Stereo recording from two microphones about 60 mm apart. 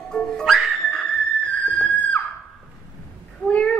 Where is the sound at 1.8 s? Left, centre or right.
Left.